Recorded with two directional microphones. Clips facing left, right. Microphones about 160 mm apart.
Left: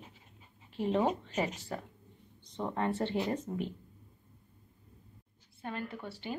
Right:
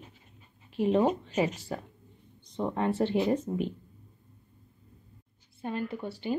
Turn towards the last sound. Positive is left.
turn(degrees=-15)  # may be behind; listen again after turning